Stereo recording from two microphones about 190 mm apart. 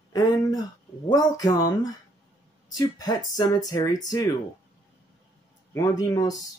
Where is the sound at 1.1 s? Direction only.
20° left (ahead or behind).